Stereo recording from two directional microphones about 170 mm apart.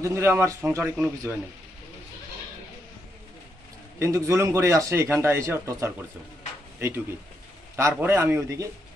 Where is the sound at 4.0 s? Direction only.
15° right (ahead or behind).